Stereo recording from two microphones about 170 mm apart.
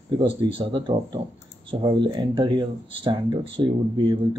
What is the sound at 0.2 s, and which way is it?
Speech, 30° right (ahead or behind).